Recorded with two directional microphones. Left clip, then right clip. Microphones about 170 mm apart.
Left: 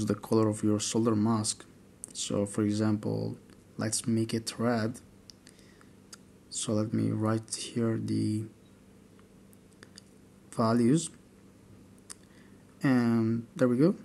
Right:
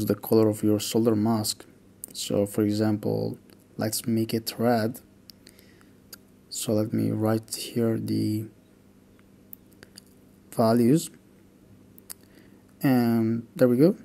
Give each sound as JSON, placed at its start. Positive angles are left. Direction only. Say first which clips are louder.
{"t": 0.0, "sound": "speech", "louder": "right 6 dB", "side_deg": -20}
{"t": 10.5, "sound": "speech", "louder": "right 5 dB", "side_deg": -20}
{"t": 12.8, "sound": "speech", "louder": "right 4 dB", "side_deg": -20}